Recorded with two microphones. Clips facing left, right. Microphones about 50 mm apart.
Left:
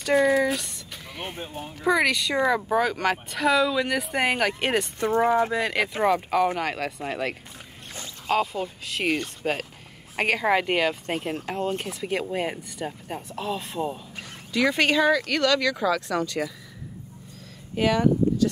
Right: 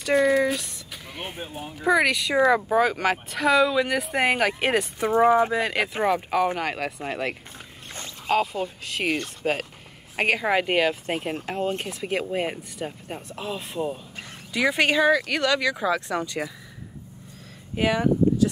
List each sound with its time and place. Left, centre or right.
0.0 s speech: centre; by 16.5 s right
17.7 s speech: centre